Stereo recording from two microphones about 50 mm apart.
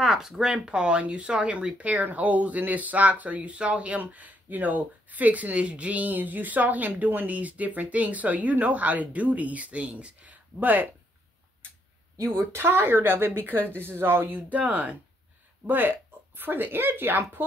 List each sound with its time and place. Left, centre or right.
0.0 s speech: centre; by 10.9 s right
12.5 s speech: right
14.5 s speech: right
15.6 s speech: right